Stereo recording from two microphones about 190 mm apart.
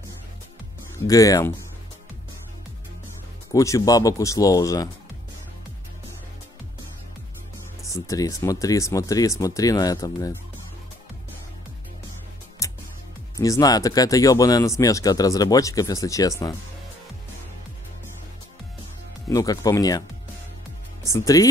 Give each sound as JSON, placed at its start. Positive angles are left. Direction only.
{"t": 1.0, "sound": "speech", "side_deg": 15}
{"t": 3.5, "sound": "speech", "side_deg": 15}
{"t": 7.9, "sound": "speech", "side_deg": 15}
{"t": 12.6, "sound": "music", "side_deg": 15}
{"t": 13.4, "sound": "speech", "side_deg": 20}
{"t": 19.2, "sound": "speech", "side_deg": 20}
{"t": 21.1, "sound": "speech", "side_deg": 20}